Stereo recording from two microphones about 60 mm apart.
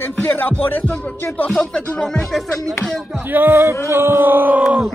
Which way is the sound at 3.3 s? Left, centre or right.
Right.